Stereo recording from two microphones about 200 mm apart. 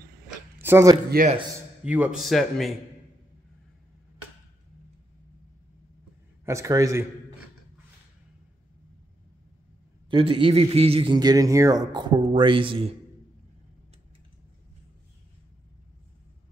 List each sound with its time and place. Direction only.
0.6 s speech: 10° right (ahead or behind)
1.1 s a man's voice: 50° right (ahead or behind)
1.8 s speech: 5° right (ahead or behind)
6.4 s a man's voice: 15° right (ahead or behind)
10.0 s a man's voice: 25° right (ahead or behind)